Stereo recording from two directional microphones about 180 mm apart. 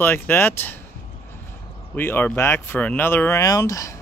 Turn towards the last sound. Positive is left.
turn(degrees=20)  # may be behind; listen again after turning